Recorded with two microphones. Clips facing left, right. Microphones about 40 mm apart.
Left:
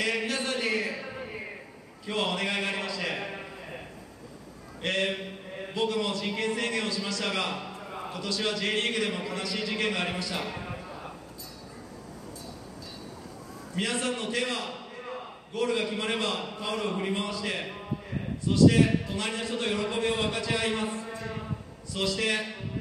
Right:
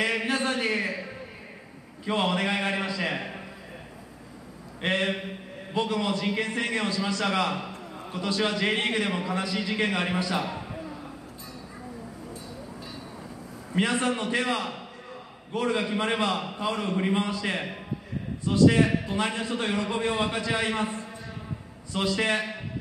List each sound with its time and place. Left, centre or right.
0.0 s a sound: centre
2.2 s a sound: centre
5.0 s mantra: centre
6.7 s a man's voice: centre
8.2 s a man's voice: centre
13.7 s a man's voice: centre